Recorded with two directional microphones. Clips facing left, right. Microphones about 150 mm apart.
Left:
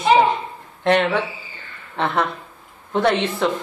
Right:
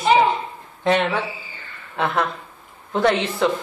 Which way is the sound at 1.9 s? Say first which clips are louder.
Left 1 dB; 5° right (ahead or behind).